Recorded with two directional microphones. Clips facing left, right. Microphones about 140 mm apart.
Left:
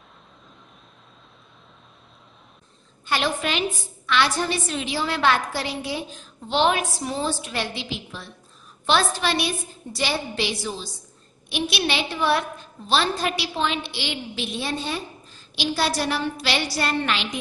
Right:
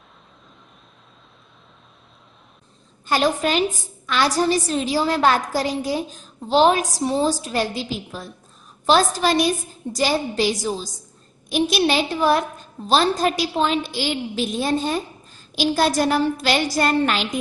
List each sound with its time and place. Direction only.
3.1 s a woman's voice: 40° right (ahead or behind)